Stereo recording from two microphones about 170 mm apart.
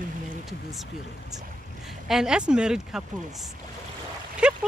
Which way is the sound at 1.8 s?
Centre (ahead or behind).